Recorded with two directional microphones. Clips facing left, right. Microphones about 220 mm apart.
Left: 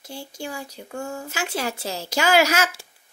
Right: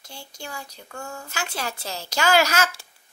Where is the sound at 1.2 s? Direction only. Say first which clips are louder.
Left 2 dB; 5° left (ahead or behind).